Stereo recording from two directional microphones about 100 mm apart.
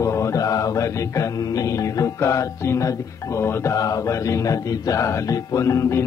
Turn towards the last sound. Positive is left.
turn(degrees=30)  # may be behind; listen again after turning